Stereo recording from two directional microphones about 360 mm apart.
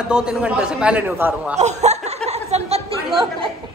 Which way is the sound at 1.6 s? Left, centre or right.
Centre.